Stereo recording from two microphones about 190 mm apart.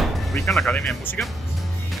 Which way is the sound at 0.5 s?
Centre (ahead or behind).